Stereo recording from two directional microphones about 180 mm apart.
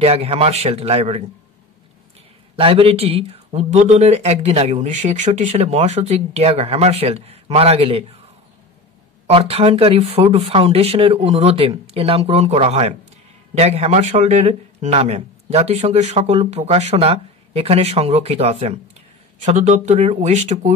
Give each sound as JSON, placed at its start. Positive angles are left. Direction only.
{"t": 0.0, "sound": "speech", "side_deg": -35}
{"t": 2.5, "sound": "speech", "side_deg": -30}
{"t": 9.3, "sound": "speech", "side_deg": -30}